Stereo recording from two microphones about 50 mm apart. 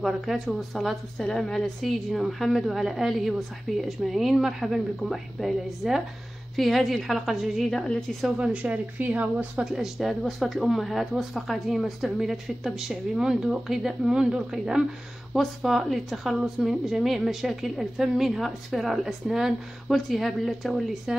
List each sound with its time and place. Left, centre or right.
0.0 s a woman's voice: centre
1.1 s a woman's voice: centre
8.1 s speech: centre
8.6 s speech: right
9.7 s a woman's voice: centre
15.3 s a woman's voice: centre